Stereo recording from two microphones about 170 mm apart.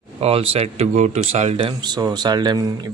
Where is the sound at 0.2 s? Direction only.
35° right (ahead or behind).